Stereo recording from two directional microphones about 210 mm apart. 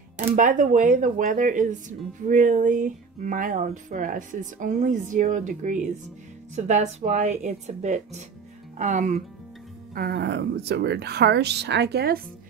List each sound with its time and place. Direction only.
0.4 s speech: 40° right (ahead or behind)
9.9 s speech: 50° right (ahead or behind)